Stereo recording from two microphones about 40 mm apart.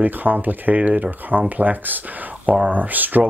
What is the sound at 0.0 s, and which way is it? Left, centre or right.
Speech, right.